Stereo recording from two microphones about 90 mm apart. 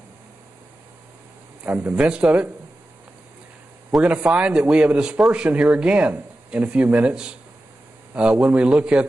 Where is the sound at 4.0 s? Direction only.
15° right (ahead or behind).